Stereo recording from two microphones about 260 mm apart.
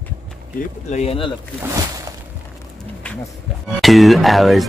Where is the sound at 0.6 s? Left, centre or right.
Left.